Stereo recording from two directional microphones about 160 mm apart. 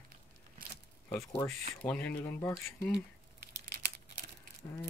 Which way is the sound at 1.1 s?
10° left (ahead or behind).